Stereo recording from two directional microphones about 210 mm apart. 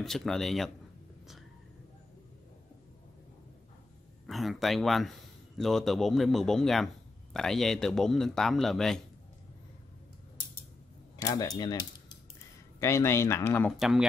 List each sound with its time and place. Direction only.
0.0 s speech: centre (ahead or behind)
4.3 s speech: centre (ahead or behind)
11.1 s speech: 15° left (ahead or behind)
12.8 s speech: 15° left (ahead or behind)
13.7 s speech: centre (ahead or behind)